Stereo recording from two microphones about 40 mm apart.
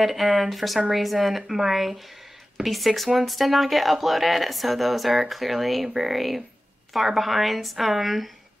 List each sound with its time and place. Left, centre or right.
0.0 s speech: centre